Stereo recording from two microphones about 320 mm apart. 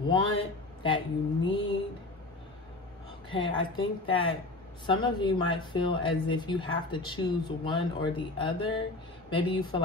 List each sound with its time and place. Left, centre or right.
0.4 s speech: centre
3.3 s speech: centre